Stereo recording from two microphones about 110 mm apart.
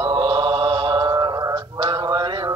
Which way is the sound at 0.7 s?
35° right (ahead or behind).